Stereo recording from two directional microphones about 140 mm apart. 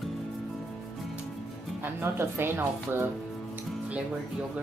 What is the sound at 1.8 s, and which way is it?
Speech, 15° right (ahead or behind).